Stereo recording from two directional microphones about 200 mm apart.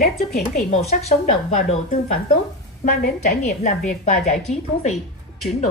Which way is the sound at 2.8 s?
40° left (ahead or behind).